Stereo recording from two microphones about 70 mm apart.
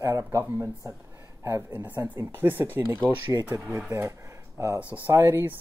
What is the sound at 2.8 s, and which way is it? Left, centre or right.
Speech, right.